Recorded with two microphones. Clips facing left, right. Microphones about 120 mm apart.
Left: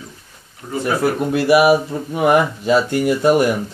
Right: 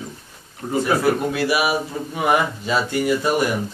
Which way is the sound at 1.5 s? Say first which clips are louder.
Left 8 dB; 60° left (ahead or behind).